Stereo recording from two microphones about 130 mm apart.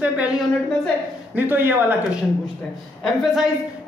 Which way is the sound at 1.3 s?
15° right (ahead or behind).